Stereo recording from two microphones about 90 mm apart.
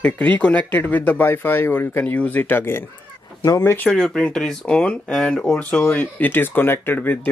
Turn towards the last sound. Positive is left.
turn(degrees=20)  # may be behind; listen again after turning